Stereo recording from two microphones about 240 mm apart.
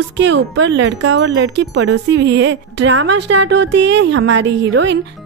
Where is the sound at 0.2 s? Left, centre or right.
Right.